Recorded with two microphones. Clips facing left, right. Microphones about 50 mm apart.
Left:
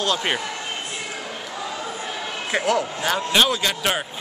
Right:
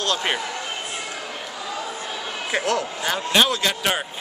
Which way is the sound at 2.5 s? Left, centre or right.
Centre.